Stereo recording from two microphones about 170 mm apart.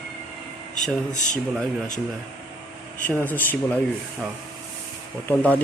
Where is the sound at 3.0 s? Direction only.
10° left (ahead or behind).